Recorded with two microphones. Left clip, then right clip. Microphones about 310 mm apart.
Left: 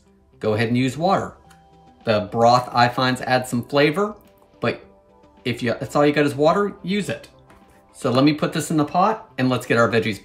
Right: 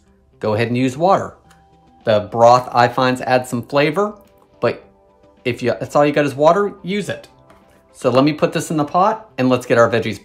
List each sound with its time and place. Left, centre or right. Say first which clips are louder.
0.4 s speech: right 3 dB; centre
5.4 s speech: right 5 dB; centre